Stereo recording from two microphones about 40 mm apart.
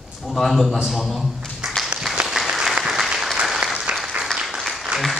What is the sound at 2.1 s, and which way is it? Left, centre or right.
Applause, centre.